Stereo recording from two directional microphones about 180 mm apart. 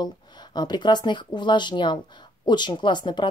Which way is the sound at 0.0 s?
25° left (ahead or behind).